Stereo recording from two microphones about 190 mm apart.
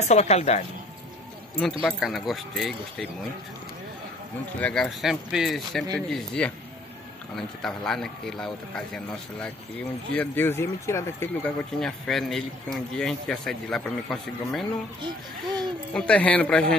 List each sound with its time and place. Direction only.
0.1 s a woman's voice: 35° left (ahead or behind)
1.6 s speech: centre (ahead or behind)
4.6 s speech: 5° left (ahead or behind)
11.8 s speech: centre (ahead or behind)